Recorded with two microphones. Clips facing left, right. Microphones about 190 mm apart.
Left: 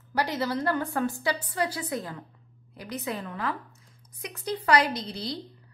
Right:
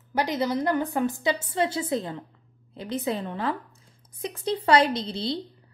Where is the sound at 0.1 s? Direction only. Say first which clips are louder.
Right 3 dB; 20° right (ahead or behind).